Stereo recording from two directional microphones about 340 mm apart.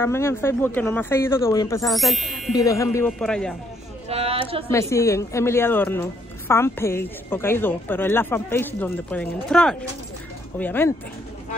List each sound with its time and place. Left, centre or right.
0.0 s a man's voice: centre
4.1 s speech: centre
4.6 s a man's voice: centre